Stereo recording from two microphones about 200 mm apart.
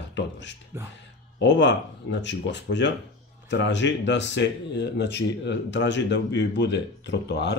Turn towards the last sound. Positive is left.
turn(degrees=55)  # may be behind; listen again after turning